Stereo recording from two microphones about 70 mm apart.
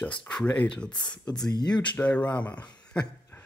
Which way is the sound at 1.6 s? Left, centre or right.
Left.